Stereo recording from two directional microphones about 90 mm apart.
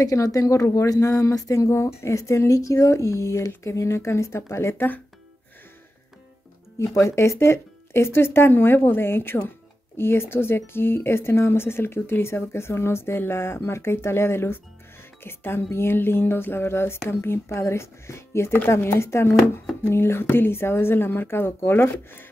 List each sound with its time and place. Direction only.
0.0 s speech: 40° left (ahead or behind); by 5.0 s 20° left (ahead or behind)
6.8 s speech: 35° left (ahead or behind)